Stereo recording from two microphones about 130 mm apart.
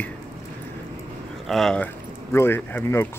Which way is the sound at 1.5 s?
5° left (ahead or behind).